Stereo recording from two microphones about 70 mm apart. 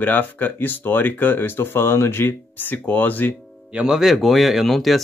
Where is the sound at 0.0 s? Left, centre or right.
Left.